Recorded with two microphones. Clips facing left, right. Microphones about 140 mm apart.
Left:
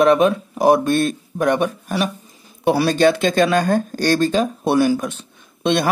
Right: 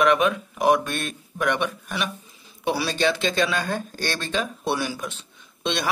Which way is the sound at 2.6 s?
50° left (ahead or behind).